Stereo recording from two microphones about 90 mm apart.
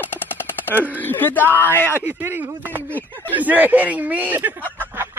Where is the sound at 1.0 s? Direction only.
25° left (ahead or behind).